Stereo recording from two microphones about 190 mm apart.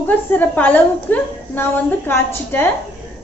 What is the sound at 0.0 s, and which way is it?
A woman's voice, 10° left (ahead or behind).